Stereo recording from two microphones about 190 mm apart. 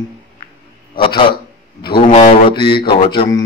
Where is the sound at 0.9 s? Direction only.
25° left (ahead or behind).